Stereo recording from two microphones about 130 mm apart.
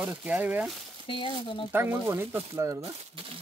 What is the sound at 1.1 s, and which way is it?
Speech, 40° left (ahead or behind).